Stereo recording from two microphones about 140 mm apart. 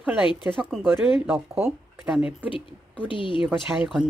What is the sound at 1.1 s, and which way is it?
Speech, 10° right (ahead or behind).